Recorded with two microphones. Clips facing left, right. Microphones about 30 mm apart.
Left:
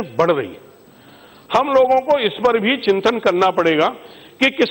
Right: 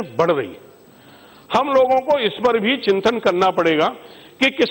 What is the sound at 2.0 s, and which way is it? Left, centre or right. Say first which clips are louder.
A man's voice: left 1 dB; centre.